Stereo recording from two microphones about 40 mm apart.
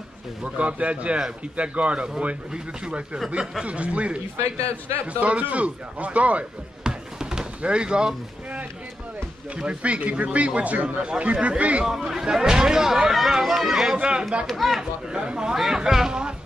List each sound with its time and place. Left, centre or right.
0.4 s speech: right
6.8 s a sound: centre
7.6 s speech: right
9.6 s speech: right
11.8 s speech: centre
13.9 s speech: right
14.4 s speech: centre
14.8 s speech: centre
15.5 s speech: centre